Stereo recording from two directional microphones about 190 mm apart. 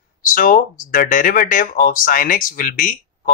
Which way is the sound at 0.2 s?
45° left (ahead or behind).